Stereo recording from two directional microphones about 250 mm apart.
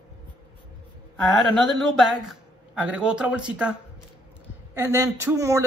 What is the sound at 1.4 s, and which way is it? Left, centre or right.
Speech, centre.